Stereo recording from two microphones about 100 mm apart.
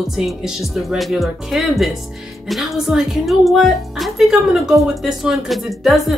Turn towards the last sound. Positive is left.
turn(degrees=0)  # may be behind; listen again after turning